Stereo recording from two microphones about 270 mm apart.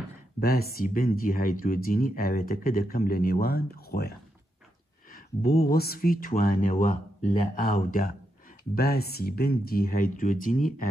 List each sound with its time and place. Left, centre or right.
0.4 s speech: left
5.1 s speech: left